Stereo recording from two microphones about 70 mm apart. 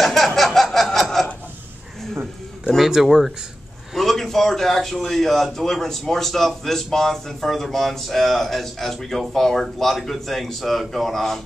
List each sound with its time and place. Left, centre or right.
0.0 s a sound: centre
0.7 s chuckle: centre
2.9 s a man's voice: centre